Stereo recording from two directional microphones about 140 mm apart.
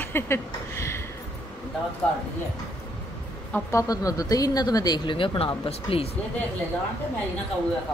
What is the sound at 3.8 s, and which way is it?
Speech, 25° left (ahead or behind).